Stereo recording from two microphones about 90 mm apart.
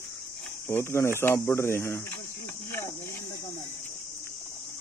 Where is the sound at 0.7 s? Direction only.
30° left (ahead or behind).